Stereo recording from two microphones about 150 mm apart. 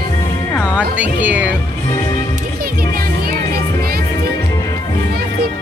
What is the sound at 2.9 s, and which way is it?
Music, 90° right.